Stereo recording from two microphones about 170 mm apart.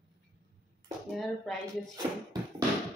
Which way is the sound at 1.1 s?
5° left (ahead or behind).